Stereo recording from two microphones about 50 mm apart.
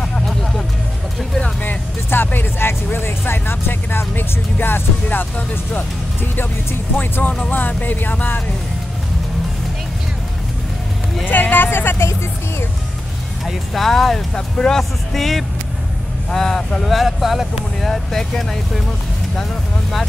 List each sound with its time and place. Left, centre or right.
1.6 s speech: left
11.2 s speech: left
13.5 s speech: centre
17.8 s speech: centre